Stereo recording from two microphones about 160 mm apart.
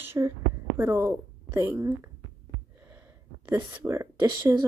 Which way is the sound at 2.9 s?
15° right (ahead or behind).